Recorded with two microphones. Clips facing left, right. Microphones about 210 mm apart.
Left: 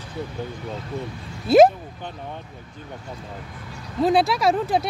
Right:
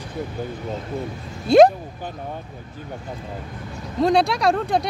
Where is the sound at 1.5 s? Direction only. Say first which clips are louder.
Right 1 dB; 5° left (ahead or behind).